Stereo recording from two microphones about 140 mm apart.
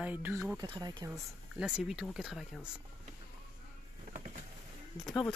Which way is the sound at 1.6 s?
5° right (ahead or behind).